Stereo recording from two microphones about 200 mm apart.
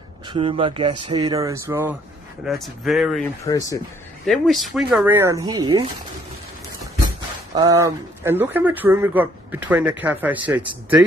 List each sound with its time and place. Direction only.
0.3 s speech: 25° right (ahead or behind)
2.4 s speech: centre (ahead or behind)
3.4 s speech: 15° left (ahead or behind)
4.3 s speech: centre (ahead or behind); by 5.7 s 20° right (ahead or behind)
7.5 s speech: 15° right (ahead or behind)